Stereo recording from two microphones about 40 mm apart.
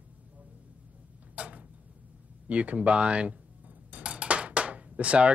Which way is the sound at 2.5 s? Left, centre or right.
Right.